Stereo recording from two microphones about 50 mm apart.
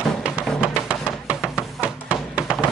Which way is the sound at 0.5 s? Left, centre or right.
Right.